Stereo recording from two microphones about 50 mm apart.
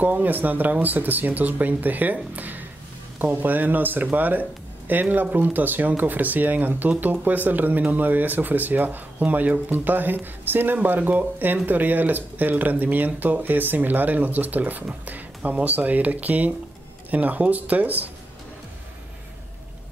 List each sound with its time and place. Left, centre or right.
0.0 s speech: right